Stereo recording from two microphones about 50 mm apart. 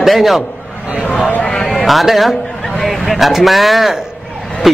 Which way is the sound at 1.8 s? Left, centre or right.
Centre.